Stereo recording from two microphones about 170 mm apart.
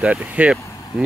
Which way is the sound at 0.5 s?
20° left (ahead or behind).